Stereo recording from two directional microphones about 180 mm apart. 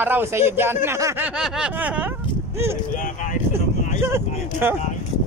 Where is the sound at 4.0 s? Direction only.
15° right (ahead or behind).